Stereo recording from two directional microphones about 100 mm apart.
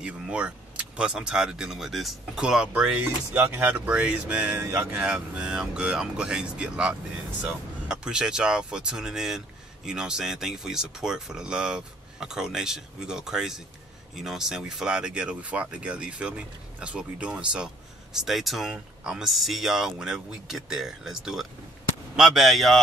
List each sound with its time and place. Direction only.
0.0 s speech: 10° right (ahead or behind)